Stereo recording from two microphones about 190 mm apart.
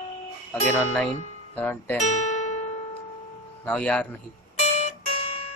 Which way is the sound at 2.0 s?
40° left (ahead or behind).